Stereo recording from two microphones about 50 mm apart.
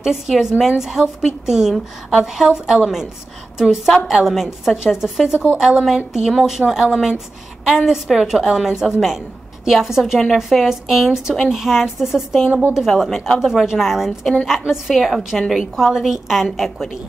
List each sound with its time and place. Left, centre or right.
0.0 s a woman's voice: centre